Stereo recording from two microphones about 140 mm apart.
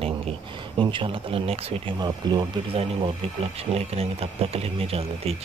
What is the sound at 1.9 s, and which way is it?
Speech, 30° right (ahead or behind).